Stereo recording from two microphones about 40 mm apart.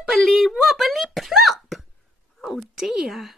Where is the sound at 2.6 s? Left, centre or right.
Centre.